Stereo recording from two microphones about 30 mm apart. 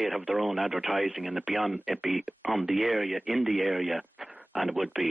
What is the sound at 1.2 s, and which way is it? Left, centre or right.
Speech, right.